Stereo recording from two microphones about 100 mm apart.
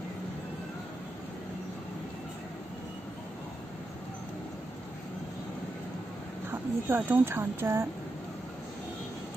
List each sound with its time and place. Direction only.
6.5 s speech: 20° right (ahead or behind)